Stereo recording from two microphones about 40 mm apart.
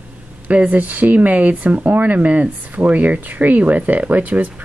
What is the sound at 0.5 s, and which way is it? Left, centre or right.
Speech, right.